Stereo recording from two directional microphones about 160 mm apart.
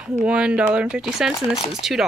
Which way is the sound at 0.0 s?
5° right (ahead or behind).